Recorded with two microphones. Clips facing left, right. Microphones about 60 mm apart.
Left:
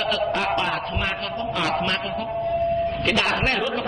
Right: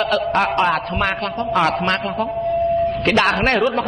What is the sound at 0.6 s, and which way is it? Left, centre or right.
Speech, right.